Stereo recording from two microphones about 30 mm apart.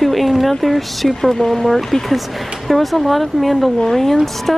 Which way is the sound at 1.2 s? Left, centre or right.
Centre.